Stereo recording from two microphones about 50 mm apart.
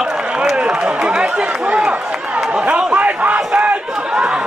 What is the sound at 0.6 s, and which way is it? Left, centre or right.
Run, centre.